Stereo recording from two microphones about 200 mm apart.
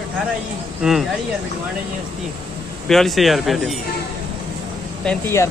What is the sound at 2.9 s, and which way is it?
Speech, centre (ahead or behind).